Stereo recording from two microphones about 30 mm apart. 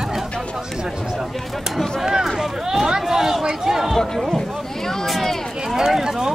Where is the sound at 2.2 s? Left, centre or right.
Centre.